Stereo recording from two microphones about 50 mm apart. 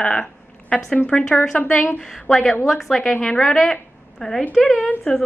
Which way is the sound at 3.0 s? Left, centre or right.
Centre.